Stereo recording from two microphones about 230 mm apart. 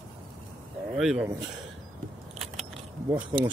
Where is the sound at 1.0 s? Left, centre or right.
Centre.